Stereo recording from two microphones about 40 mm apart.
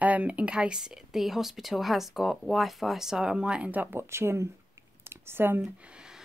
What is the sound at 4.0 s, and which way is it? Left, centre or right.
Speech, right.